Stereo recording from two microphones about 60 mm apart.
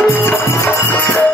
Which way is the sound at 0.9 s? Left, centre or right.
Left.